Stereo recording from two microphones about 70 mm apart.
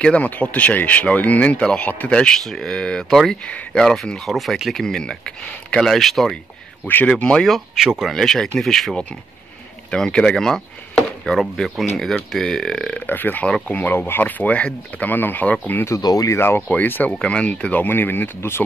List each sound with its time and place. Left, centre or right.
0.0 s speech: centre
7.3 s speech: centre
8.2 s speech: centre
13.0 s speech: left
13.9 s speech: left
16.0 s speech: left
16.3 s speech: left
17.2 s speech: centre; by 18.6 s left